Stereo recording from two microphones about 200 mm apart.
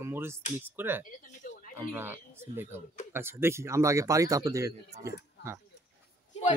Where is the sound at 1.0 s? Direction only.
45° left (ahead or behind).